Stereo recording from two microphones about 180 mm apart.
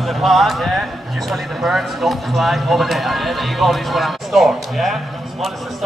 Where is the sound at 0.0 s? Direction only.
Centre (ahead or behind).